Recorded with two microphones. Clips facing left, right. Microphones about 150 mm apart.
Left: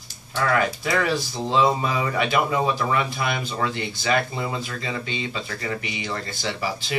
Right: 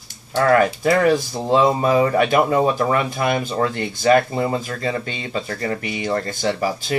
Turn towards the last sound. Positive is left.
turn(degrees=-45)  # may be behind; listen again after turning